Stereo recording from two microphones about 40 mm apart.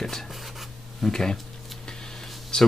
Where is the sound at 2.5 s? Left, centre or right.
Left.